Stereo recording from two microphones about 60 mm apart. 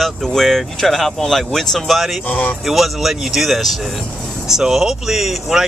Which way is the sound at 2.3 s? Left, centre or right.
Left.